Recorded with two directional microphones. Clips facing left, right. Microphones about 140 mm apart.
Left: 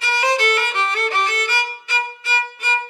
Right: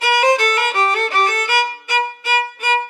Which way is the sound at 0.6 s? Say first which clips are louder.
Right 4 dB; 45° right (ahead or behind).